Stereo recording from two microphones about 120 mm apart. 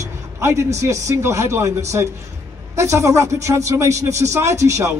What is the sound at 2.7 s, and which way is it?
A man's voice, 25° right (ahead or behind).